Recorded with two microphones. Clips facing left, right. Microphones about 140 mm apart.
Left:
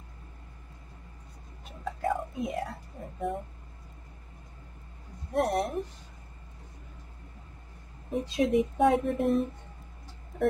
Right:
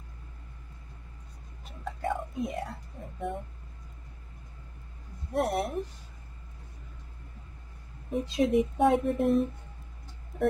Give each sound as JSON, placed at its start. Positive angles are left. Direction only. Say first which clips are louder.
{"t": 1.9, "sound": "a sound", "louder": "left 2 dB", "side_deg": 0}
{"t": 5.3, "sound": "speech", "louder": "left 1 dB", "side_deg": 0}
{"t": 8.1, "sound": "speech", "louder": "even", "side_deg": 0}